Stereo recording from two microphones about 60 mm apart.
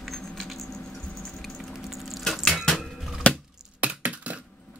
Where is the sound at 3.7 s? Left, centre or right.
Right.